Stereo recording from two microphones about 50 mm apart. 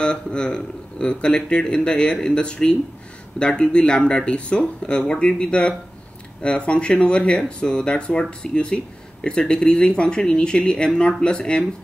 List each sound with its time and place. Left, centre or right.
0.0 s speech: centre